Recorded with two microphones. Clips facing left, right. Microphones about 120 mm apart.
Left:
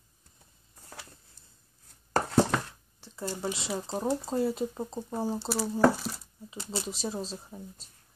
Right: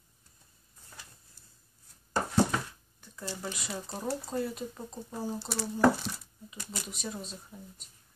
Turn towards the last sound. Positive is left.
turn(degrees=35)  # may be behind; listen again after turning